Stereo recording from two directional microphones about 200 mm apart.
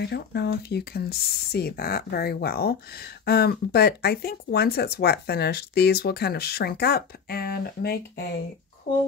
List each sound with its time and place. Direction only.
0.0 s speech: 55° left (ahead or behind)